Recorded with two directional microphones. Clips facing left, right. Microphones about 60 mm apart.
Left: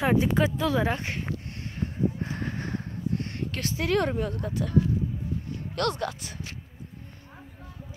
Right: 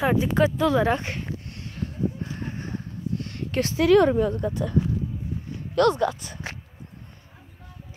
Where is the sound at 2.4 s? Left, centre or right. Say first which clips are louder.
Left 1 dB; left.